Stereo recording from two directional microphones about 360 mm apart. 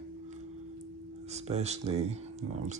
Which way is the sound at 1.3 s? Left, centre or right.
Centre.